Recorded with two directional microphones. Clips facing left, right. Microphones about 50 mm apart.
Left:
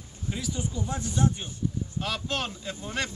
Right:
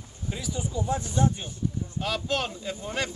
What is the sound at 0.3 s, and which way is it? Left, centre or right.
Speech, centre.